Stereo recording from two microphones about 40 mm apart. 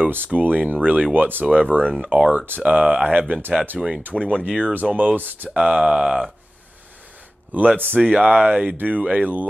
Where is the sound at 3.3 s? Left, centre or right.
Right.